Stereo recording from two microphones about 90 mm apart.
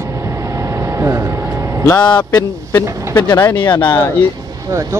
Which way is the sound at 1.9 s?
55° left (ahead or behind).